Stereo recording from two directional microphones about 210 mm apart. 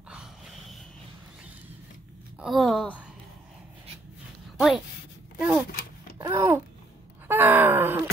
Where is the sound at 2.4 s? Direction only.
Centre (ahead or behind).